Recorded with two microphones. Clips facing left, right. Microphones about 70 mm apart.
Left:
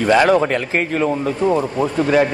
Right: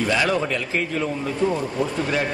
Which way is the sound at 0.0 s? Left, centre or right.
Left.